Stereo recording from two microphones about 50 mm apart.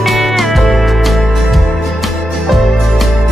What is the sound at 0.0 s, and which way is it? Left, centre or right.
Music, centre.